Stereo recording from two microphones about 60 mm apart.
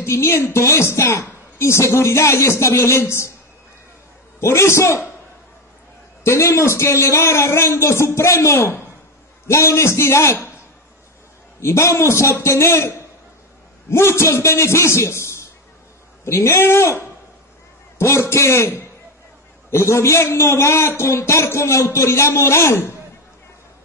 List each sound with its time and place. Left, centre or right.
0.0 s a woman's voice: left
4.4 s a woman's voice: left
6.2 s a woman's voice: left
8.5 s a woman's voice: left
11.6 s a woman's voice: left